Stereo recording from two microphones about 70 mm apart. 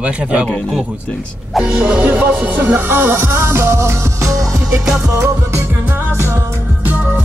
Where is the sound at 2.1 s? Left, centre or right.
Right.